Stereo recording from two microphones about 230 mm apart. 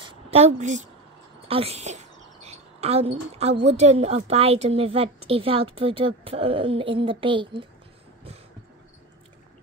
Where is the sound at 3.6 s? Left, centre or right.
Right.